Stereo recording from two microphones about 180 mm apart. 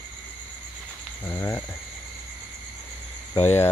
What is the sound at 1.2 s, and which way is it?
Speech, 15° left (ahead or behind).